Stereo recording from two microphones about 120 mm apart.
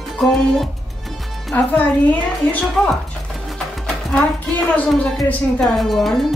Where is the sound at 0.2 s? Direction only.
5° left (ahead or behind).